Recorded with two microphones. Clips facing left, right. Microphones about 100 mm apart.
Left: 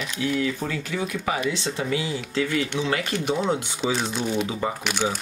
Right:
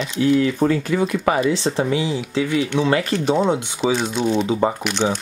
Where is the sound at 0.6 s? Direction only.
45° right (ahead or behind).